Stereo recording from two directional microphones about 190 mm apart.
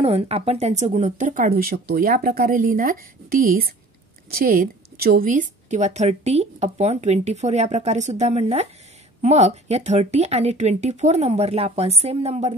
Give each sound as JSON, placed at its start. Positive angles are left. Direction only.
{"t": 0.0, "sound": "a woman's voice", "side_deg": -30}